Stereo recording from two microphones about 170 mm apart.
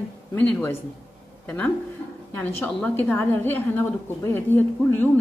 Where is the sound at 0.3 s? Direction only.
15° left (ahead or behind).